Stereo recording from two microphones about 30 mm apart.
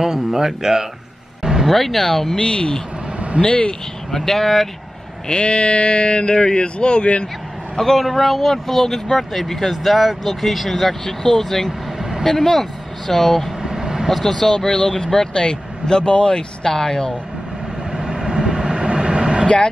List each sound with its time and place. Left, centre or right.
0.0 s speech: centre
1.4 s vehicle: centre
1.7 s speech: centre
2.3 s speech: left
4.1 s speech: centre
5.3 s speech: left
7.7 s a man's voice: centre
13.6 s vehicle: right
14.2 s speech: centre
17.9 s vehicle: right
19.4 s speech: left